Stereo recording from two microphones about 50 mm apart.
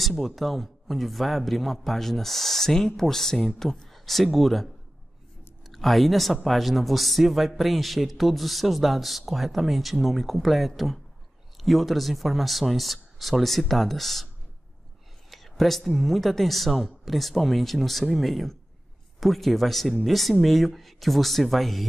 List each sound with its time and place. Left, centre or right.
0.0 s a man's voice: centre
5.7 s a man's voice: centre